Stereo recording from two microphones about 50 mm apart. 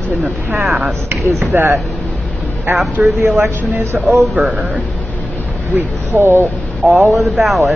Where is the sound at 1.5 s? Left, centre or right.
Right.